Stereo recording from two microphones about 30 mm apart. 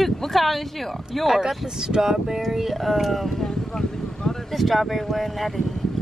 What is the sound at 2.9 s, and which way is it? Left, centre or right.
Speech, centre.